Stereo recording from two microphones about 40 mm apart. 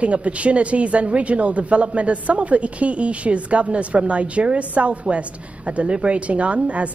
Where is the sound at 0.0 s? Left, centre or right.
Right.